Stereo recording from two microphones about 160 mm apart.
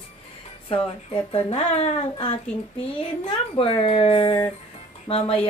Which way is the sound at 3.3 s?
35° left (ahead or behind).